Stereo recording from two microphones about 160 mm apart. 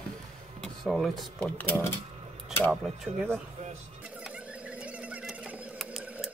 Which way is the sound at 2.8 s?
Centre (ahead or behind).